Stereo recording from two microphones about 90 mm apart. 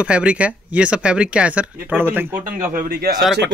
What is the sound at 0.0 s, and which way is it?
Speech, 10° right (ahead or behind).